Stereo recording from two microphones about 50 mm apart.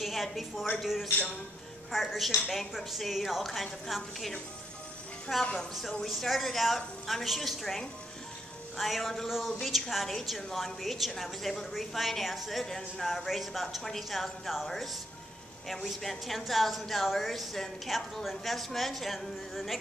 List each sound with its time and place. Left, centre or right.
0.0 s a woman's voice: centre
1.9 s a woman's voice: centre
5.4 s speech: centre
6.0 s a woman's voice: centre
15.7 s a woman's voice: centre